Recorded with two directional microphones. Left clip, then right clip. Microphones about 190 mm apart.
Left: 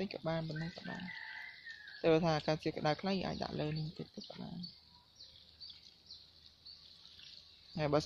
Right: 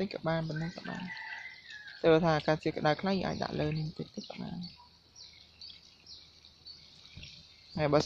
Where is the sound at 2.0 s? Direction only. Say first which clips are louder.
Right 6 dB; 10° left (ahead or behind).